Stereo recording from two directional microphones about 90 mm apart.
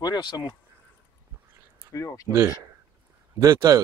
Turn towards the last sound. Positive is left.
turn(degrees=-40)  # may be behind; listen again after turning